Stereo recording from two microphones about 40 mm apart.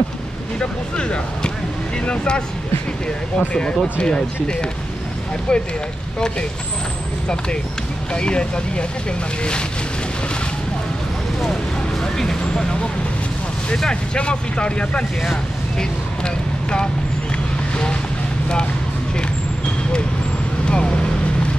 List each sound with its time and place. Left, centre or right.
0.6 s speech: left
8.1 s speech: left
12.0 s speech: centre
20.6 s speech: left